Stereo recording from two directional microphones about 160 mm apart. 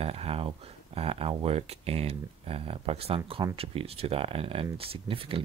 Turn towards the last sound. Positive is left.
turn(degrees=-35)  # may be behind; listen again after turning